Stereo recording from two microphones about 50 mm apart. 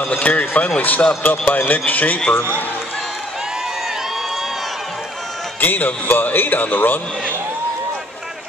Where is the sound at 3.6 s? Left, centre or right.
Centre.